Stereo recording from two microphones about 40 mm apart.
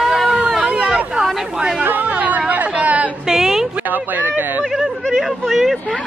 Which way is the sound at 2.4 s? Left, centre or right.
Right.